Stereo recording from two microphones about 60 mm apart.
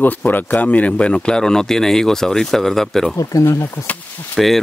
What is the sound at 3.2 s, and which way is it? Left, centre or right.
Speech, left.